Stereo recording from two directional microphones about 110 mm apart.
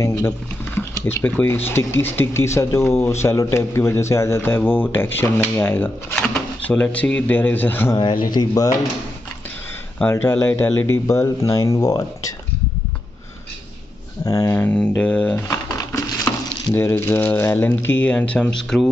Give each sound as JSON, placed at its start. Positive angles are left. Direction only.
{"t": 0.0, "sound": "speech", "side_deg": 25}
{"t": 1.0, "sound": "speech", "side_deg": 15}
{"t": 7.9, "sound": "speech", "side_deg": 40}
{"t": 10.0, "sound": "speech", "side_deg": 20}
{"t": 14.2, "sound": "speech", "side_deg": 25}
{"t": 15.0, "sound": "speech", "side_deg": 10}
{"t": 16.3, "sound": "sizzle", "side_deg": 40}
{"t": 16.7, "sound": "speech", "side_deg": 20}